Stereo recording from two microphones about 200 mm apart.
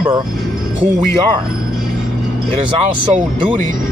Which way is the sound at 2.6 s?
30° right (ahead or behind).